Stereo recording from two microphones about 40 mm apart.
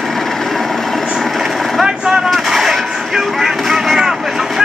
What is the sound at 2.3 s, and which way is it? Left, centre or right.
Vehicle, centre.